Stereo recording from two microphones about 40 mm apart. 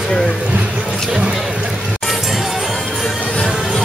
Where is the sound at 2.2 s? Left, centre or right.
Centre.